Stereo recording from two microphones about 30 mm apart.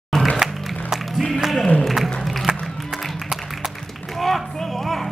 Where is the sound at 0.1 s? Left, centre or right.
Centre.